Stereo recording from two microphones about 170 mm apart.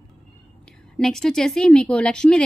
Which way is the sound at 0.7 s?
5° left (ahead or behind).